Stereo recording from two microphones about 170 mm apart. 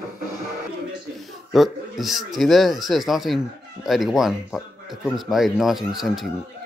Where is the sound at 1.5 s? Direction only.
Centre (ahead or behind).